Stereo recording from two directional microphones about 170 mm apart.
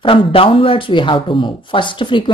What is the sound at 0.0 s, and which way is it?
A woman's voice, 30° left (ahead or behind).